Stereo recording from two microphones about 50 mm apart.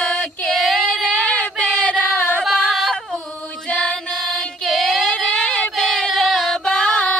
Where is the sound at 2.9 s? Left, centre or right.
Centre.